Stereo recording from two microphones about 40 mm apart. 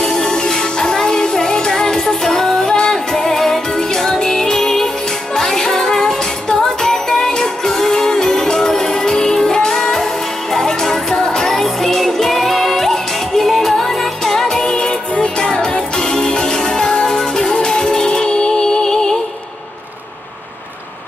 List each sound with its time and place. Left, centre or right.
0.0 s music: centre